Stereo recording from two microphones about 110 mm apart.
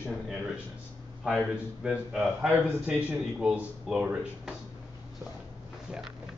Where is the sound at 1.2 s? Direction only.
5° right (ahead or behind).